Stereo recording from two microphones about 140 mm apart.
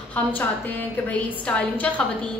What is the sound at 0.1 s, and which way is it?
A woman's voice, 10° left (ahead or behind).